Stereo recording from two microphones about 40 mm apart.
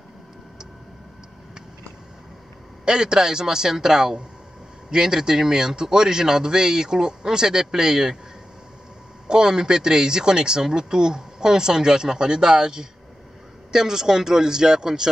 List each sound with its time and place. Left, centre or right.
2.8 s speech: centre
9.3 s speech: centre